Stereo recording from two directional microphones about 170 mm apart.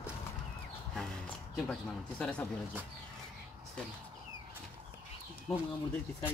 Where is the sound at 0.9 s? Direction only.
5° left (ahead or behind).